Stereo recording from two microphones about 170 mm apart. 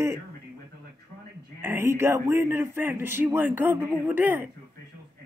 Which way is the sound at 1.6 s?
15° right (ahead or behind).